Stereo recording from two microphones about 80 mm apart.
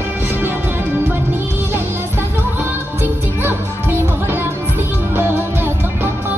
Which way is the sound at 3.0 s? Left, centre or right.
Right.